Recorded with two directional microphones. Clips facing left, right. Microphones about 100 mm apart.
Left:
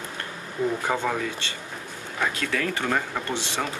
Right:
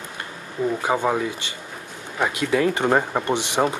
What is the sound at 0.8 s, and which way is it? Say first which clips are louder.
Speech: right 4 dB; 15° right (ahead or behind).